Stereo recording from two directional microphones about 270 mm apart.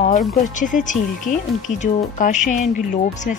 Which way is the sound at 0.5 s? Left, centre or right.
Left.